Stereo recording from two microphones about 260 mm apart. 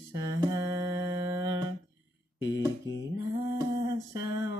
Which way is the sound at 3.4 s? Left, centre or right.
Centre.